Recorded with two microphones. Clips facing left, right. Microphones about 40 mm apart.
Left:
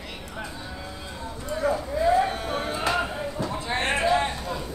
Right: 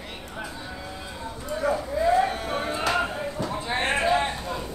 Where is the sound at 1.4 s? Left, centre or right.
Centre.